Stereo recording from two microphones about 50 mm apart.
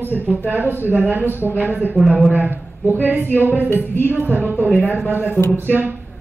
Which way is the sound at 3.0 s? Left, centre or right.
Right.